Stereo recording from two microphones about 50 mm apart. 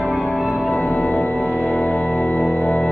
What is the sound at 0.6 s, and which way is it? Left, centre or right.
Music, left.